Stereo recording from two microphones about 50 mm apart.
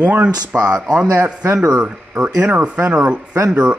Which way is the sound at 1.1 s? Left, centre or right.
Right.